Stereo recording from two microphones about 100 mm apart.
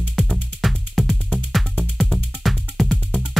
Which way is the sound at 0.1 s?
Centre (ahead or behind).